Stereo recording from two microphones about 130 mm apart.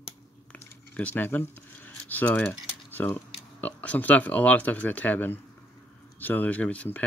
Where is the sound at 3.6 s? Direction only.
10° left (ahead or behind).